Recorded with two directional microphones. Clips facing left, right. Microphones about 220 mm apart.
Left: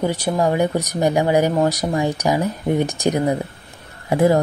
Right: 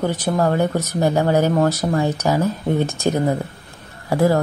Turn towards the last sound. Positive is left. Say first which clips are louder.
# left 1 dB
turn(degrees=20)  # may be behind; listen again after turning